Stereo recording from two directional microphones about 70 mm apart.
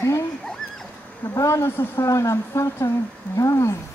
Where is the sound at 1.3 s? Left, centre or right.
Left.